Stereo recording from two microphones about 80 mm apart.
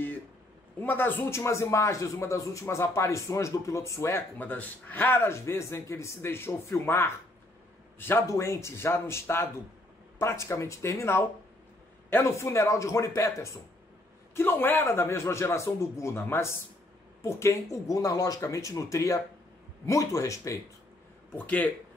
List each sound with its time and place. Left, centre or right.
0.7 s speech: left
1.3 s speech: left
4.4 s speech: left
8.3 s speech: left
14.3 s speech: left
21.3 s speech: left